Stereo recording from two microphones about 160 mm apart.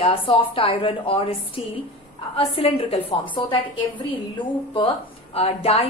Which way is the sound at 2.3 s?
35° left (ahead or behind).